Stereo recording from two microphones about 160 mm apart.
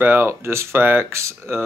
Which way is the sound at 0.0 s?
15° right (ahead or behind).